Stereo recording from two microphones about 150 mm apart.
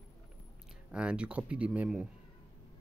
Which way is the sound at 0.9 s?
5° right (ahead or behind).